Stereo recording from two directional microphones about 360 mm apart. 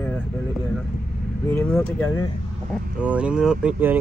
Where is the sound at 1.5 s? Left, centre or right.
Centre.